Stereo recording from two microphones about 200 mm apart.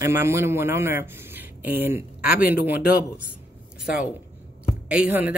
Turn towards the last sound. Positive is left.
turn(degrees=-5)  # may be behind; listen again after turning